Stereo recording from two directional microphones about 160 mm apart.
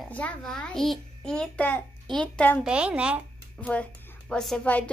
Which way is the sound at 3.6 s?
10° left (ahead or behind).